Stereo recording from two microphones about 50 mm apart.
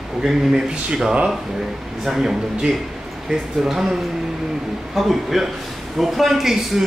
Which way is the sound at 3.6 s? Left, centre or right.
Centre.